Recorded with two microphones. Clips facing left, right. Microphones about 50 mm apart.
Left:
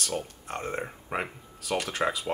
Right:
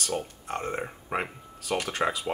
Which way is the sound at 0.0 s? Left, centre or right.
Centre.